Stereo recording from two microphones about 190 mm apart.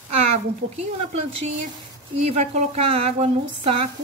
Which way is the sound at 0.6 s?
90° right.